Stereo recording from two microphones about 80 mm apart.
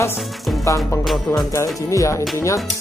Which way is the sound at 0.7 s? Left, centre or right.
Left.